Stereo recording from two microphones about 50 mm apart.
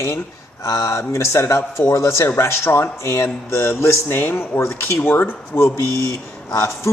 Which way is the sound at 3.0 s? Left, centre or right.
Left.